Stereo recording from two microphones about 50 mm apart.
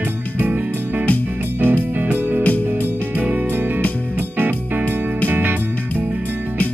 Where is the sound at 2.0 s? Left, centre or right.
Right.